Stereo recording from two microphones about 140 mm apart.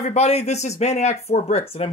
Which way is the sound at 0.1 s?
50° left (ahead or behind).